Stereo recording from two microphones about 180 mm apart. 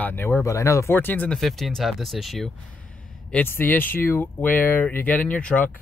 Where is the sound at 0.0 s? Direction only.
10° left (ahead or behind).